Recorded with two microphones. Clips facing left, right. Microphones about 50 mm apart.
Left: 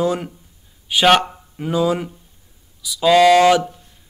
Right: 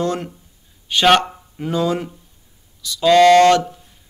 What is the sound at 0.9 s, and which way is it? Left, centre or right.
Speech, centre.